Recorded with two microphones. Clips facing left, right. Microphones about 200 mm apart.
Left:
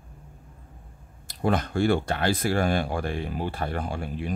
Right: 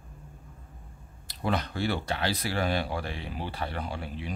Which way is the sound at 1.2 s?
50° left (ahead or behind).